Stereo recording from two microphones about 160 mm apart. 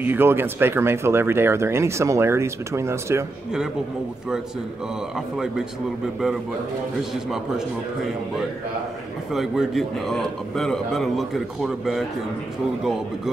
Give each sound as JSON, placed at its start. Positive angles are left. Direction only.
{"t": 0.0, "sound": "speech", "side_deg": -15}
{"t": 9.3, "sound": "a man's voice", "side_deg": 0}